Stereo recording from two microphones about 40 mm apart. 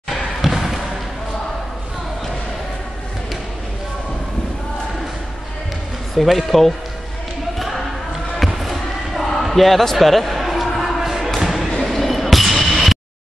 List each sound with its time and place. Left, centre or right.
0.1 s basketball bounce: centre
6.1 s speech: centre
7.5 s a sound: centre
11.7 s basketball bounce: centre